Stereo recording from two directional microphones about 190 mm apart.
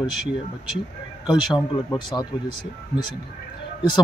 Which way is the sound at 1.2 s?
20° left (ahead or behind).